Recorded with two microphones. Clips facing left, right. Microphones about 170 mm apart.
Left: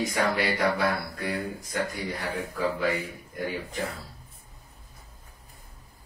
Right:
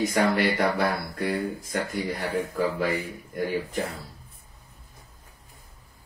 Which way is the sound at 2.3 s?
50° right (ahead or behind).